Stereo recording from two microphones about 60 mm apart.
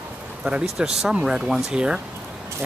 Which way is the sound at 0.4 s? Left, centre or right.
Centre.